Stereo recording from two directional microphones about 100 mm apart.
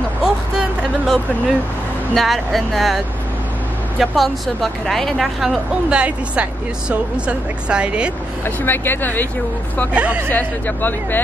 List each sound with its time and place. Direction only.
0.2 s speech: 5° right (ahead or behind)
4.0 s speech: centre (ahead or behind)
5.9 s a woman's voice: 10° right (ahead or behind)
8.6 s speech: 20° left (ahead or behind)
9.9 s a woman's voice: 15° right (ahead or behind)
10.3 s speech: 20° left (ahead or behind)